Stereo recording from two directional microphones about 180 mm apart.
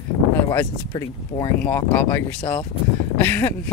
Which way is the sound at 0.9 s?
20° left (ahead or behind).